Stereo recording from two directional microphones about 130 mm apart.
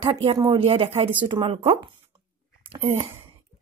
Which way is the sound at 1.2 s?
40° right (ahead or behind).